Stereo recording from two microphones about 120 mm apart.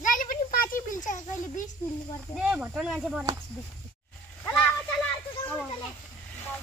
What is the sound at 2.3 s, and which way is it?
Speech, 10° right (ahead or behind).